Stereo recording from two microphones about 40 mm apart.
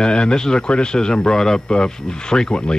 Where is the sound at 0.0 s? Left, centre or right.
Left.